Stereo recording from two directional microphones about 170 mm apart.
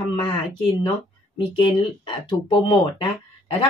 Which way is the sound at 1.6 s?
30° left (ahead or behind).